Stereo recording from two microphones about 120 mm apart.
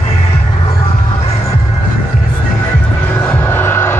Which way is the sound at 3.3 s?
20° left (ahead or behind).